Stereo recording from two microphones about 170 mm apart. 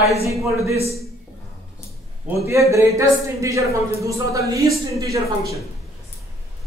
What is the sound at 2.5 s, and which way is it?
Speech, 15° right (ahead or behind).